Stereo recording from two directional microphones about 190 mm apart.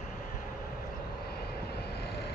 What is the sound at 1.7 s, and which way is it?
Vehicle, 60° left (ahead or behind).